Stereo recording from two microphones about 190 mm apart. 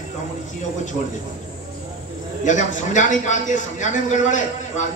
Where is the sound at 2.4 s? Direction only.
40° left (ahead or behind).